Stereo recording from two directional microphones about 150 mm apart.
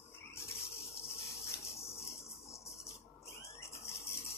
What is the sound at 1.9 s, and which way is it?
Cricket, 20° left (ahead or behind).